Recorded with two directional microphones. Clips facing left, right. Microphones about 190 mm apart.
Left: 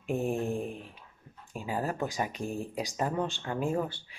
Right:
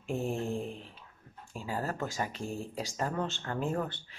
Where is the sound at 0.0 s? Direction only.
15° left (ahead or behind).